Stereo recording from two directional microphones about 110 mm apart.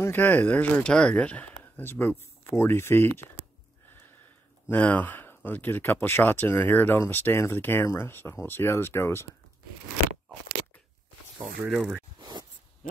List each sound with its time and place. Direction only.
0.0 s speech: 15° left (ahead or behind)
4.6 s speech: 15° left (ahead or behind)
11.6 s speech: 10° right (ahead or behind)
12.2 s a sound: 40° right (ahead or behind)